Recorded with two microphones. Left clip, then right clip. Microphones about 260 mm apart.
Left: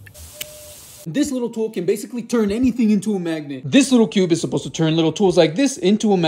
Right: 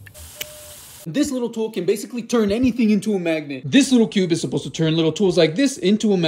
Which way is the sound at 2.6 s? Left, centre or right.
Left.